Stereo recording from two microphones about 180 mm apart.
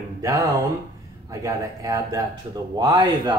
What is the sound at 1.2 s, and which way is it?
Speech, 20° right (ahead or behind).